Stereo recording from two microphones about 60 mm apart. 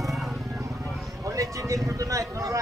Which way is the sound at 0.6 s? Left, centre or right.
Right.